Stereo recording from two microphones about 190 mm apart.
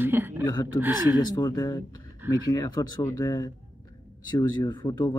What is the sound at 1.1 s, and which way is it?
Speech, 20° left (ahead or behind).